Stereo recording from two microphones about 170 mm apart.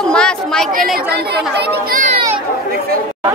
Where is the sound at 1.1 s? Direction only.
70° right (ahead or behind).